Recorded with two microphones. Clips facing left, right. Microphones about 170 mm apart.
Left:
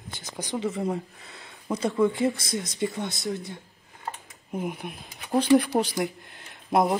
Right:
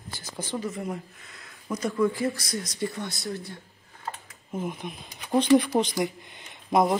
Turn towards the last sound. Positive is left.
turn(degrees=5)  # may be behind; listen again after turning